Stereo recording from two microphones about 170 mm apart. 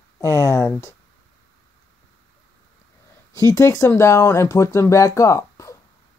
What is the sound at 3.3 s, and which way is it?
Speech, 20° left (ahead or behind).